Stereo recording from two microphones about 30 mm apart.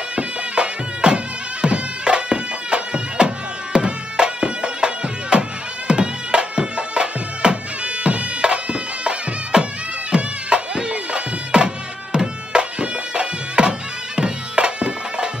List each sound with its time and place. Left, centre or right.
0.1 s music: right